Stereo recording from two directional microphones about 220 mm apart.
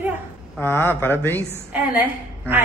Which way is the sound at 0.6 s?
10° left (ahead or behind).